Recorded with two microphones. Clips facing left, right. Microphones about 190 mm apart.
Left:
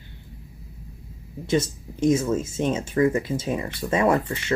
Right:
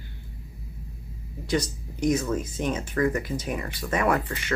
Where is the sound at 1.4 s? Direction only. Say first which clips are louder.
Left 4 dB; 25° left (ahead or behind).